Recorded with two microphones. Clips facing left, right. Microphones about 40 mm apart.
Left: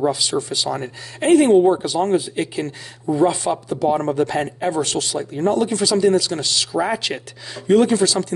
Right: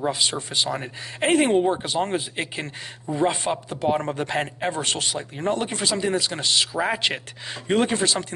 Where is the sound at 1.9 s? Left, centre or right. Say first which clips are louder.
Left 6 dB; right.